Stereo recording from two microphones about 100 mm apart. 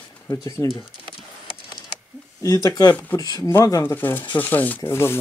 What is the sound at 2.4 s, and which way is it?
Speech, 35° left (ahead or behind).